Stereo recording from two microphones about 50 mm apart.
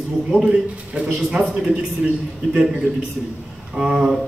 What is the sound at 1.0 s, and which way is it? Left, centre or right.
A man's voice, centre.